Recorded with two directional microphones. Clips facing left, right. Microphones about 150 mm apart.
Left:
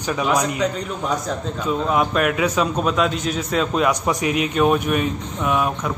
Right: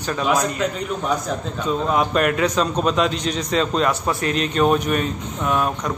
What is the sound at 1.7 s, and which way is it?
A man's voice, centre (ahead or behind).